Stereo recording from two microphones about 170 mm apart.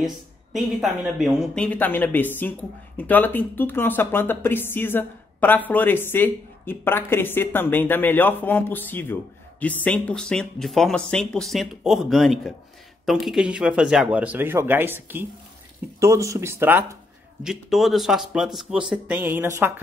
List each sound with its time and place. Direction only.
0.0 s speech: centre (ahead or behind)
17.4 s speech: centre (ahead or behind)